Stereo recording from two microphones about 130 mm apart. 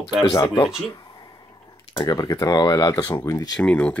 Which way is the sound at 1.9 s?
35° left (ahead or behind).